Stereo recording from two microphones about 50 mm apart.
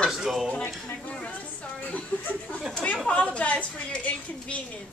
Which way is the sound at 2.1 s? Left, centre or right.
Left.